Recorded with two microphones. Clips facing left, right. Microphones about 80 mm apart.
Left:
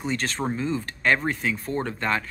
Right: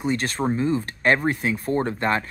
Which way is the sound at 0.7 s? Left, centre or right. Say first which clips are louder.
Right 2 dB; right.